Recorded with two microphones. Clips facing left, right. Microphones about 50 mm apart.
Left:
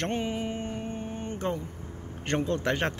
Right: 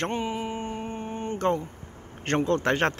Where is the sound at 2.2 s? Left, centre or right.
Right.